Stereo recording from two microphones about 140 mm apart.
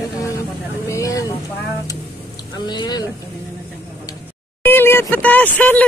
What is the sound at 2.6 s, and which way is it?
Speech, 30° left (ahead or behind).